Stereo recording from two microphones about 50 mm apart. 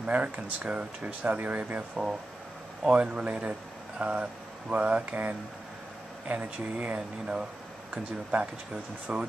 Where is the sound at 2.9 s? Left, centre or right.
Right.